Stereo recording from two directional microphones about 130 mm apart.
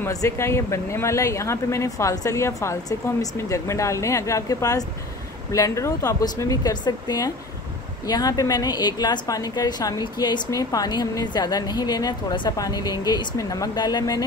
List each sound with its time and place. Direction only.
0.1 s a woman's voice: 25° left (ahead or behind)